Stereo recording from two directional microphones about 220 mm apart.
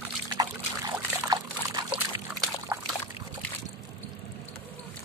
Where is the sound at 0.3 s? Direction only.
20° right (ahead or behind).